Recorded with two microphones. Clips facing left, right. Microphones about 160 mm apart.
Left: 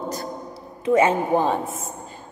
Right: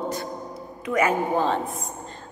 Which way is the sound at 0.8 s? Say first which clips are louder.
Left 5 dB; 25° left (ahead or behind).